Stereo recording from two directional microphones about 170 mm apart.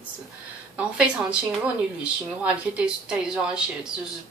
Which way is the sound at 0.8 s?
5° right (ahead or behind).